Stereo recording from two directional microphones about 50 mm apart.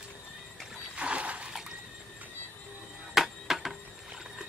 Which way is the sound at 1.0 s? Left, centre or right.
Right.